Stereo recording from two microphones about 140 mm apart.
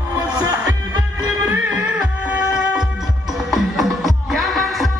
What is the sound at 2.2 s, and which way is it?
Music, 5° right (ahead or behind).